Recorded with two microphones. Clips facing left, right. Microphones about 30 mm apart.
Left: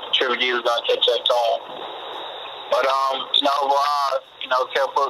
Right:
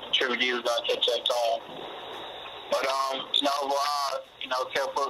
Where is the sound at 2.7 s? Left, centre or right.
Centre.